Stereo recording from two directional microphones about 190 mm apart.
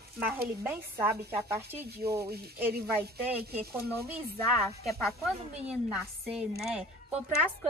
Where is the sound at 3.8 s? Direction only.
55° right (ahead or behind).